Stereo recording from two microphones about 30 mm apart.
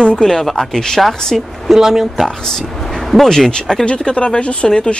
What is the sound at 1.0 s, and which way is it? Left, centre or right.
Speech, centre.